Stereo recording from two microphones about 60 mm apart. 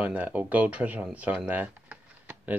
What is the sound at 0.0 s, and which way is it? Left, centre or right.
Speech, right.